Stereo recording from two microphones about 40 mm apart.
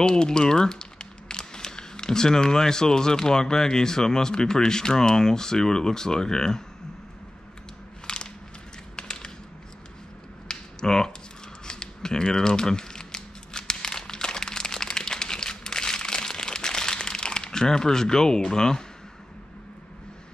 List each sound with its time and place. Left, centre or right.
0.0 s speech: left
8.1 s crushing: centre
8.9 s a sound: left
10.5 s a sound: centre
11.6 s crumpling: centre
18.5 s speech: centre